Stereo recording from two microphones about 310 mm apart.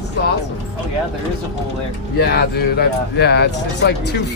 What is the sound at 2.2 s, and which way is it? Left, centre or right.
Speech, left.